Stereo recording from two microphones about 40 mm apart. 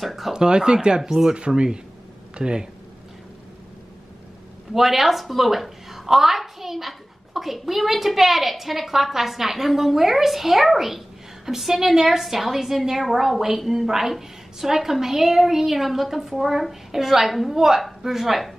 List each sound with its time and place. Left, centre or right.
0.0 s a sound: centre
0.3 s a woman's voice: centre
4.7 s a woman's voice: centre